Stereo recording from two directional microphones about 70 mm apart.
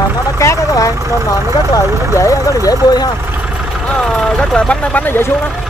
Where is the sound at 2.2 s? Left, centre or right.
Left.